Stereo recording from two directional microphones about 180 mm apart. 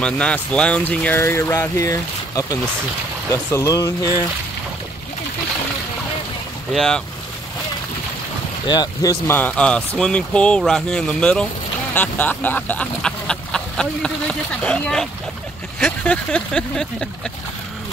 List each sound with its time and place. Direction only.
0.0 s speech: 5° left (ahead or behind)
6.7 s speech: 5° left (ahead or behind)
8.6 s speech: 20° left (ahead or behind)
9.4 s speech: 5° left (ahead or behind)